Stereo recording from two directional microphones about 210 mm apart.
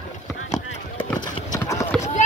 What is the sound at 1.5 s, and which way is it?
Run, 15° left (ahead or behind).